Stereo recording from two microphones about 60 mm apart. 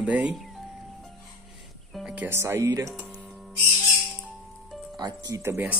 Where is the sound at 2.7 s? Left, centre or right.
Right.